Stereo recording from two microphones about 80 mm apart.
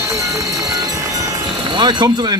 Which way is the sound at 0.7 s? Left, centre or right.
Right.